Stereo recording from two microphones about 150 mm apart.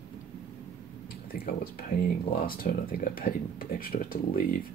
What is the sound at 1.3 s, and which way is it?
Speech, 75° left (ahead or behind).